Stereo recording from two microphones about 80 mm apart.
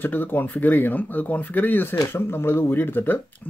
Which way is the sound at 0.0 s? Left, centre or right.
Left.